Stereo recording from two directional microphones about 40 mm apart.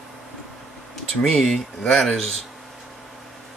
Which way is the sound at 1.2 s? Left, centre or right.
Centre.